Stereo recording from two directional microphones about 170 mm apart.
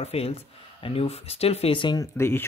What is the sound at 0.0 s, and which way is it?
Speech, 35° left (ahead or behind).